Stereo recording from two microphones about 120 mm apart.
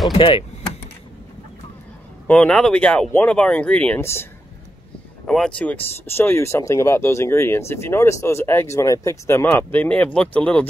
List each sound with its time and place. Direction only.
0.2 s speech: 45° left (ahead or behind)
2.2 s speech: 10° left (ahead or behind)
4.0 s speech: 20° left (ahead or behind)
5.2 s speech: 5° left (ahead or behind)